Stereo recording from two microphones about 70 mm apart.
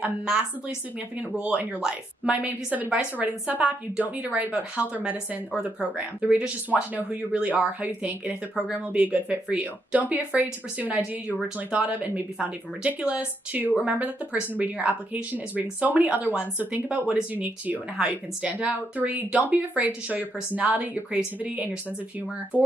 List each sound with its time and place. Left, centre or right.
0.2 s speech: centre
2.3 s speech: right